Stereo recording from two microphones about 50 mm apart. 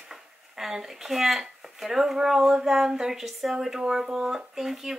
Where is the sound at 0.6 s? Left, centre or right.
Centre.